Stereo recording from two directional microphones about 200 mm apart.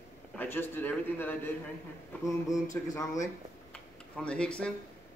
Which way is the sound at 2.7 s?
15° left (ahead or behind).